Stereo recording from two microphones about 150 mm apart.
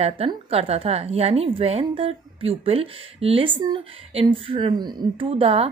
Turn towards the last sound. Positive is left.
turn(degrees=-40)  # may be behind; listen again after turning